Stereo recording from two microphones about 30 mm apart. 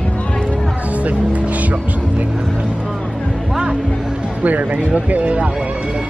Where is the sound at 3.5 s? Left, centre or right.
Right.